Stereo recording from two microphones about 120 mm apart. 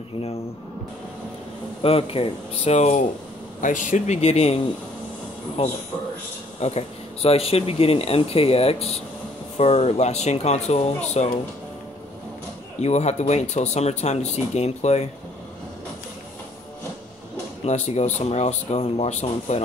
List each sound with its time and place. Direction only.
1.8 s speech: 50° left (ahead or behind); by 3.1 s 80° left
3.6 s speech: 90° left; by 4.6 s 60° left (ahead or behind)
5.6 s speech: 65° left (ahead or behind)
12.8 s speech: 65° left (ahead or behind)
17.6 s speech: 70° left (ahead or behind)